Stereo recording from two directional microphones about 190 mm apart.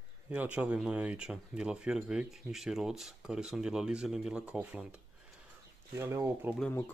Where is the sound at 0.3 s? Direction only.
10° right (ahead or behind).